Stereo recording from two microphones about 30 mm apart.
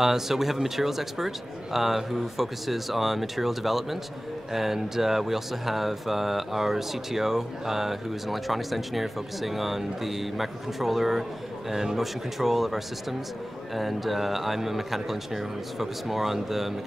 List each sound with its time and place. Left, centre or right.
0.0 s speech: centre
11.7 s speech: centre
12.0 s speech: centre